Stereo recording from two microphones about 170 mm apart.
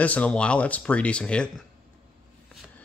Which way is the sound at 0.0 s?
10° left (ahead or behind).